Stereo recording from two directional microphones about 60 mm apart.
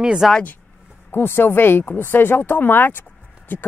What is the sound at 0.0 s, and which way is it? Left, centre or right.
Speech, centre.